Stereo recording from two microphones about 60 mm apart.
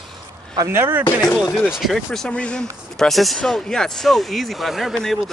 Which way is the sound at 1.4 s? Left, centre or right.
Centre.